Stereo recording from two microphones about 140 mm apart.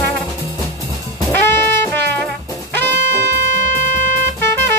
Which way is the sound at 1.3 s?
15° left (ahead or behind).